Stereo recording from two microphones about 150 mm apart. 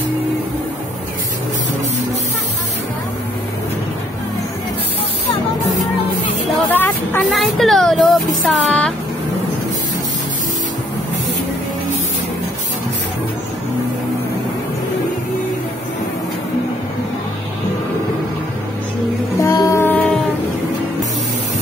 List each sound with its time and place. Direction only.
6.7 s a sound: 15° left (ahead or behind)
7.2 s speech: centre (ahead or behind)
19.4 s music: 20° left (ahead or behind)